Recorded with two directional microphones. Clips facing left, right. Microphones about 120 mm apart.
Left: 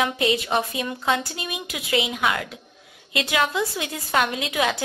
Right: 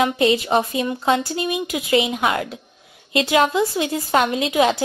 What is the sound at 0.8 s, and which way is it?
A woman's voice, 20° right (ahead or behind).